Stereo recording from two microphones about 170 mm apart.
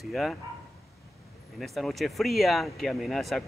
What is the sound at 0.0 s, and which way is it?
Speech, centre (ahead or behind).